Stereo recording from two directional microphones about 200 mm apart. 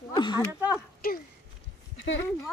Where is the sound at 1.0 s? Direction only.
50° left (ahead or behind).